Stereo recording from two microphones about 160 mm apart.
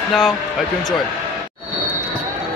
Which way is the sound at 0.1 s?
Centre (ahead or behind).